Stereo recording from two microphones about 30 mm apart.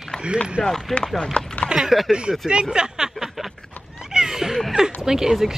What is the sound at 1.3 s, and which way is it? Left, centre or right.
Chopping, left.